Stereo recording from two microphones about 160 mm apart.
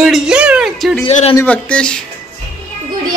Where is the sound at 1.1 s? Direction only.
40° left (ahead or behind).